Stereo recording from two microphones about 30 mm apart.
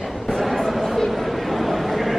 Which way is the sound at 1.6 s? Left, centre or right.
Centre.